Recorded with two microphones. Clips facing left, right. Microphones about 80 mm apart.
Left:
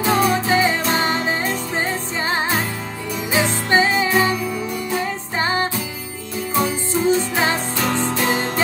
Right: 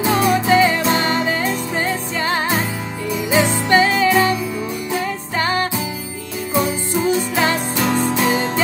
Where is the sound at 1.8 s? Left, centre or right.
Left.